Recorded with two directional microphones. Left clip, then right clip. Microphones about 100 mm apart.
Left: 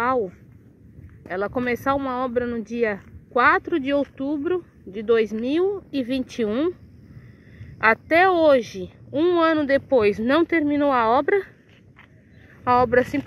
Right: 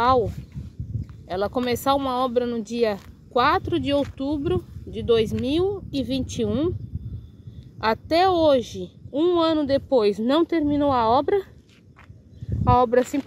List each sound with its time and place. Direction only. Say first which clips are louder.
0.0 s speech: right 3 dB; 40° right (ahead or behind)
3.3 s speech: left 2 dB; 20° right (ahead or behind)
7.8 s speech: left 3 dB; 20° right (ahead or behind)
12.6 s speech: left 1 dB; 35° right (ahead or behind)